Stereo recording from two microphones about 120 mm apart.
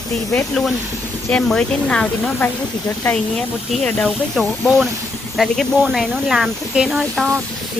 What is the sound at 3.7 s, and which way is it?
Speech, 5° left (ahead or behind).